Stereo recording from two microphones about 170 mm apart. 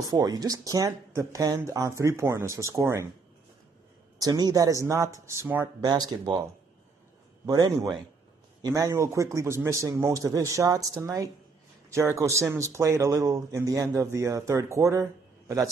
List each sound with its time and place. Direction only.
0.0 s speech: 20° right (ahead or behind)
4.2 s a man's voice: 20° right (ahead or behind)
7.4 s a man's voice: 20° right (ahead or behind)